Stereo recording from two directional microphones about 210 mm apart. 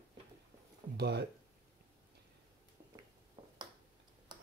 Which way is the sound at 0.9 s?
55° right (ahead or behind).